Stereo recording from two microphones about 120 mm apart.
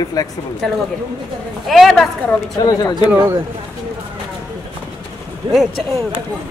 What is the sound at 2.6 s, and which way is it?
Speech, 30° left (ahead or behind).